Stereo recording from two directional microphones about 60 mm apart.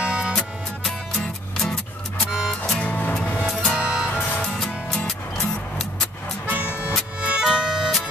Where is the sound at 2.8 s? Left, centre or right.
Left.